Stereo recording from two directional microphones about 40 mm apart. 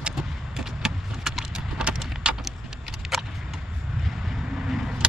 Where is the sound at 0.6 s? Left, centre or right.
Centre.